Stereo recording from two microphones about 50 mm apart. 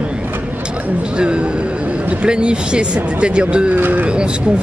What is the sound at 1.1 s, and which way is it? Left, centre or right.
Speech, centre.